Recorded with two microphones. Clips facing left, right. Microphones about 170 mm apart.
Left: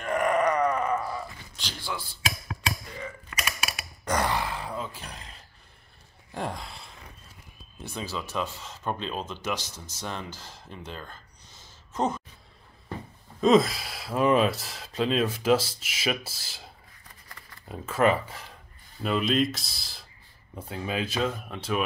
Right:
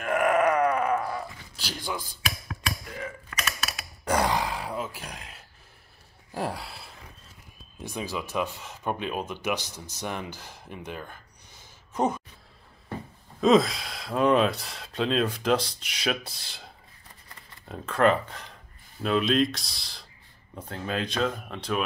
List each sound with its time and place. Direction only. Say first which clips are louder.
0.0 s a sound: right 2 dB; 5° right (ahead or behind)
3.3 s typewriter: even; 10° left (ahead or behind)
4.0 s grunt: right 2 dB; 10° right (ahead or behind)
6.3 s speech: right 2 dB; 5° right (ahead or behind)
13.4 s speech: even; centre (ahead or behind)